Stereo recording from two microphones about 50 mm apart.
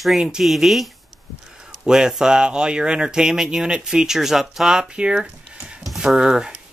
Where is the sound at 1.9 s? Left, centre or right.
Centre.